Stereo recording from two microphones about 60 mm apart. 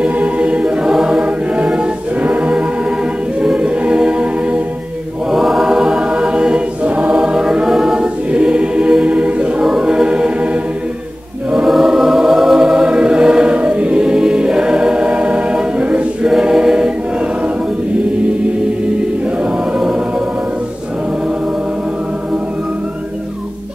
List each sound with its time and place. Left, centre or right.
0.0 s choir: right
5.3 s choir: centre
11.5 s choir: centre
19.4 s music: centre